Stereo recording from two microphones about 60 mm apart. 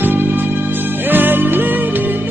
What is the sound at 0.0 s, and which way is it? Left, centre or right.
Music, right.